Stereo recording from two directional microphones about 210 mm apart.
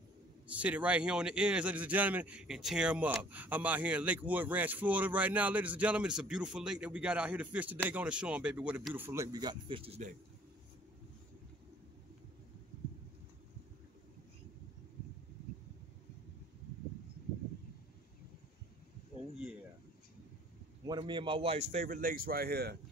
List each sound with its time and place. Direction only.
0.5 s a man's voice: 5° right (ahead or behind); by 10.1 s 30° right (ahead or behind)
20.8 s speech: 20° right (ahead or behind); by 22.8 s 50° right (ahead or behind)